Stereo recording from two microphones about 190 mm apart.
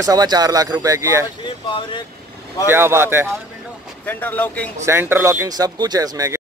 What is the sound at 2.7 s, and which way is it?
Speech, 10° right (ahead or behind).